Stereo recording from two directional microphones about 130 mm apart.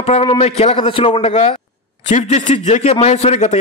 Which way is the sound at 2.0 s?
60° left (ahead or behind).